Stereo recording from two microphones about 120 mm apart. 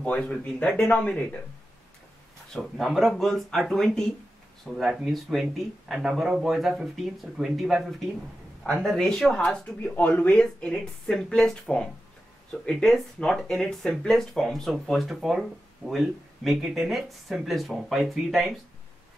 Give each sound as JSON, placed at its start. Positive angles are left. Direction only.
{"t": 0.0, "sound": "speech", "side_deg": 10}
{"t": 2.5, "sound": "speech", "side_deg": 5}
{"t": 8.8, "sound": "speech", "side_deg": 5}